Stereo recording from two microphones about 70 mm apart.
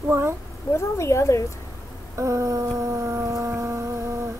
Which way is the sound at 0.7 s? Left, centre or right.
Left.